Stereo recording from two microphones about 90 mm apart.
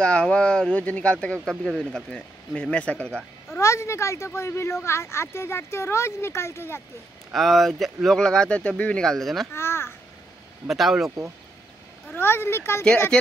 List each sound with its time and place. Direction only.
0.0 s speech: 10° left (ahead or behind)
3.5 s speech: 30° left (ahead or behind)
7.3 s speech: centre (ahead or behind)
9.5 s a child's voice: 30° left (ahead or behind)
10.7 s speech: centre (ahead or behind)
12.1 s speech: 25° left (ahead or behind)
12.8 s speech: 10° left (ahead or behind)